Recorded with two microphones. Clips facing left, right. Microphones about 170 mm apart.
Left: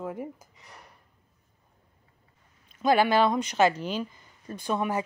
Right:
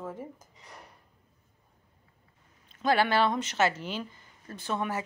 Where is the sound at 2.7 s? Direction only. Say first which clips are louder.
Left 3 dB; 15° left (ahead or behind).